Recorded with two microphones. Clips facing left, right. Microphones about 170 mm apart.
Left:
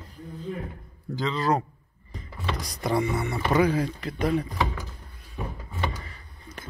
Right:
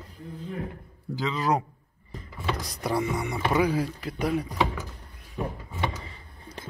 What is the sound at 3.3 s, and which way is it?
Speech, 5° right (ahead or behind).